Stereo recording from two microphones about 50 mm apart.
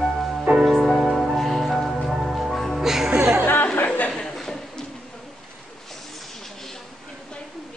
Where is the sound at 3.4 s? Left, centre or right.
Left.